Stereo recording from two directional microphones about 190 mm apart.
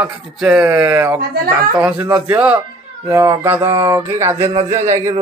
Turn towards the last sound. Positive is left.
turn(degrees=-15)  # may be behind; listen again after turning